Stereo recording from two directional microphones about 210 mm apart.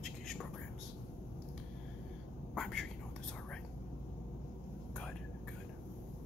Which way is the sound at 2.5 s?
Centre (ahead or behind).